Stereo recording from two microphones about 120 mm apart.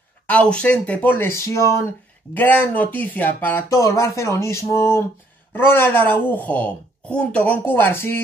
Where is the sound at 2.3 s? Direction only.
15° left (ahead or behind).